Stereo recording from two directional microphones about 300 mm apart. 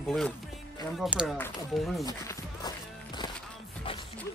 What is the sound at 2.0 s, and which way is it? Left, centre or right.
Music, centre.